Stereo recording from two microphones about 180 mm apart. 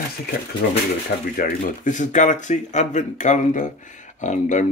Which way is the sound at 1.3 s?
50° left (ahead or behind).